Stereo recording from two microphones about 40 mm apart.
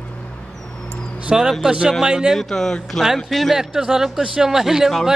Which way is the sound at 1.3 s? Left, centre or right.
Centre.